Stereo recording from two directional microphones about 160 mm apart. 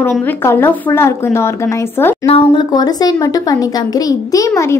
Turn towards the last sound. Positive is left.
turn(degrees=20)  # may be behind; listen again after turning